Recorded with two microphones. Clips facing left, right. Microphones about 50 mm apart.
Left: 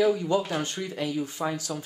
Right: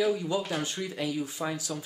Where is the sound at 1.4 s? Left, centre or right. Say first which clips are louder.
Left 4 dB; centre.